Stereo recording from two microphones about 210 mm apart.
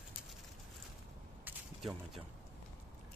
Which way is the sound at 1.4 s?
Centre (ahead or behind).